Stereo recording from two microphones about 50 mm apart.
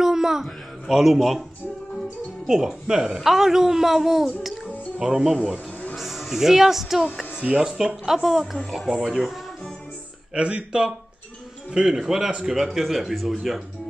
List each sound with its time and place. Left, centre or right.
0.0 s a man's voice: centre
2.4 s speech: centre
4.4 s music: centre
5.0 s speech: centre
5.9 s speech: centre
7.3 s speech: centre
8.8 s speech: centre
10.3 s speech: right; by 13.6 s centre